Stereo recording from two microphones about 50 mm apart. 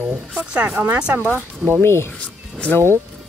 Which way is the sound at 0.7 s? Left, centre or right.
Right.